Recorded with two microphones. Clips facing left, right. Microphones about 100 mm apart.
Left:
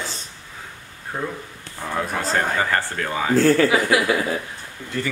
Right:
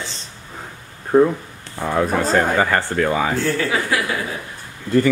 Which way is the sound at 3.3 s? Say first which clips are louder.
Left 5 dB; 40° left (ahead or behind).